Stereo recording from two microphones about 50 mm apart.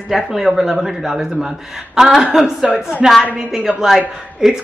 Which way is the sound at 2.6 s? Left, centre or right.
Centre.